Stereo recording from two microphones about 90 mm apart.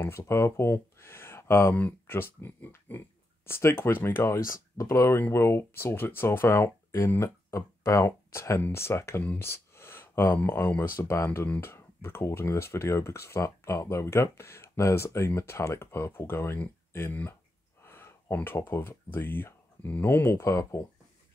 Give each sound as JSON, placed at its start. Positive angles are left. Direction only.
{"t": 0.0, "sound": "speech", "side_deg": 30}